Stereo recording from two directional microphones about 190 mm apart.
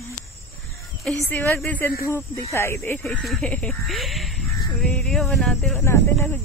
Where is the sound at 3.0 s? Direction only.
Centre (ahead or behind).